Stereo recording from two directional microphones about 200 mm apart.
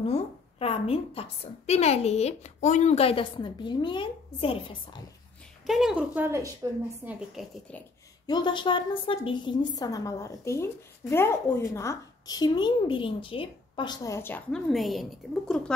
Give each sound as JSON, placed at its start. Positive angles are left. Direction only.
{"t": 0.0, "sound": "a woman's voice", "side_deg": 30}
{"t": 5.7, "sound": "a woman's voice", "side_deg": 0}
{"t": 7.4, "sound": "a woman's voice", "side_deg": 0}
{"t": 8.3, "sound": "a woman's voice", "side_deg": 25}